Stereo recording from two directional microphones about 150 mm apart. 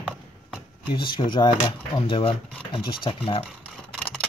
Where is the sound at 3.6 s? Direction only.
5° left (ahead or behind).